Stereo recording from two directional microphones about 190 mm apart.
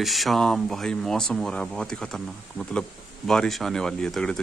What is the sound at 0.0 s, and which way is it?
A man's voice, centre (ahead or behind).